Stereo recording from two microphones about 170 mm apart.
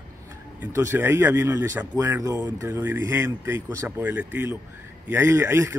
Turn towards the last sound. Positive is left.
turn(degrees=-15)  # may be behind; listen again after turning